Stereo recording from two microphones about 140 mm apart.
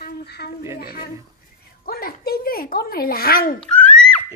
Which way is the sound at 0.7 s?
90° left.